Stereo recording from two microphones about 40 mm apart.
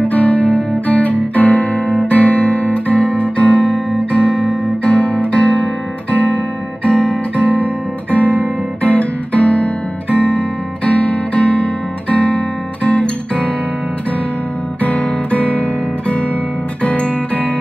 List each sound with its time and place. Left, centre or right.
0.0 s music: left
4.1 s guitar: left
10.1 s music: left
14.8 s guitar: left
16.8 s music: left